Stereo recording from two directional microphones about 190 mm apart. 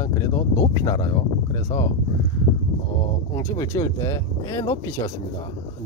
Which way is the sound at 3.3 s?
20° left (ahead or behind).